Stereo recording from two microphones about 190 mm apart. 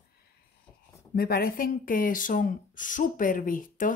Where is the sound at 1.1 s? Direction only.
55° left (ahead or behind).